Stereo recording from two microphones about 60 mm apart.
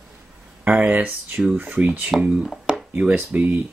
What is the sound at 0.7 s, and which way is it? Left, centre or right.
Speech, right.